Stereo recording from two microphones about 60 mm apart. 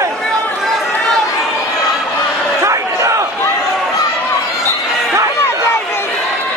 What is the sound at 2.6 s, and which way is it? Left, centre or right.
Crowd, right.